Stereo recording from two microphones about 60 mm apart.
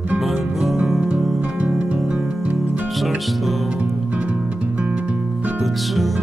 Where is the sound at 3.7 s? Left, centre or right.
Right.